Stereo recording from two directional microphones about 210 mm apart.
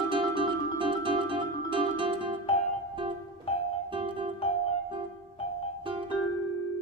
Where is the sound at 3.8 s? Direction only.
25° right (ahead or behind).